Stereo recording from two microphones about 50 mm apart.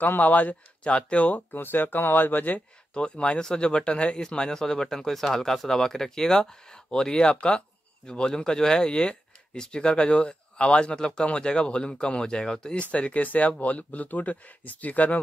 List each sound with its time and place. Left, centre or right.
0.0 s speech: left
2.9 s speech: centre
12.9 s speech: left